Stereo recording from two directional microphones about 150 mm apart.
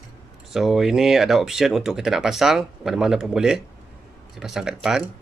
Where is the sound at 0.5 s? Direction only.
Centre (ahead or behind).